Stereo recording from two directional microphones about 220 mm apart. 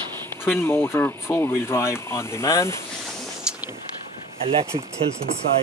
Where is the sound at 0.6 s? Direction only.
10° left (ahead or behind).